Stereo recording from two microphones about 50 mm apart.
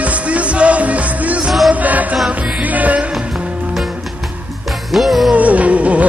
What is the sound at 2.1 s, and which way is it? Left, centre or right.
Music, centre.